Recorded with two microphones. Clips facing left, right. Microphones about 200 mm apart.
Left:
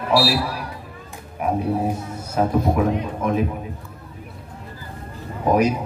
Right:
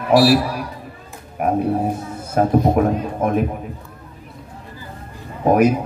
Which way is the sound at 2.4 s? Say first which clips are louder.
Right 4 dB; 55° right (ahead or behind).